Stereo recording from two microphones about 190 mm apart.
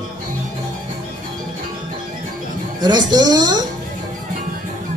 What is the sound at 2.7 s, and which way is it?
Music, 20° right (ahead or behind).